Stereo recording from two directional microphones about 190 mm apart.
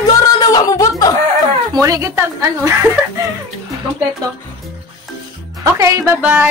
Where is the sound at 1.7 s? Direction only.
15° right (ahead or behind).